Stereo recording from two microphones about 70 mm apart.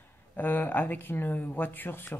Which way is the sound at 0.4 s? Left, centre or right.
Left.